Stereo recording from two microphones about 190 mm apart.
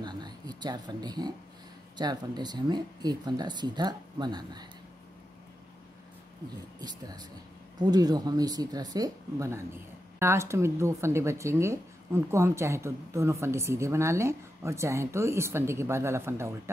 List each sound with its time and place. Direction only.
0.0 s a sound: 20° right (ahead or behind)
2.0 s speech: 20° right (ahead or behind)
6.8 s speech: 20° right (ahead or behind)